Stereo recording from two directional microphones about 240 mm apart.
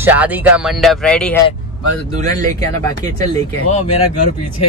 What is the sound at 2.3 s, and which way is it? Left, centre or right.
Speech, right.